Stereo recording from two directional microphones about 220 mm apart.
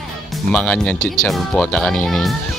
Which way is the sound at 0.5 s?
5° left (ahead or behind).